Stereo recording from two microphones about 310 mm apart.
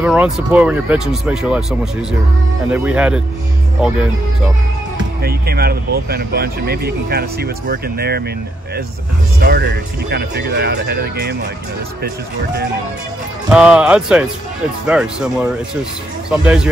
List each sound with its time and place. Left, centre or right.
0.0 s speech: centre
5.2 s speech: right
9.4 s speech: right
13.5 s speech: centre